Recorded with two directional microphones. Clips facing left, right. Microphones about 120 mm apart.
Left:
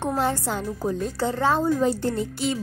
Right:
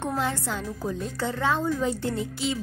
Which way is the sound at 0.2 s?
45° left (ahead or behind).